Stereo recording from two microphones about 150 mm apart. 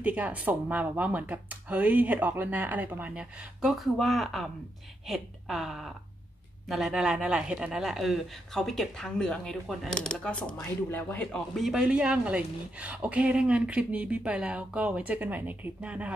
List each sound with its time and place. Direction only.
0.0 s speech: 10° right (ahead or behind)